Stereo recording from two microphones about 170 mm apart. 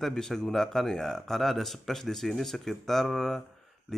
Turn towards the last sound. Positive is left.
turn(degrees=0)  # may be behind; listen again after turning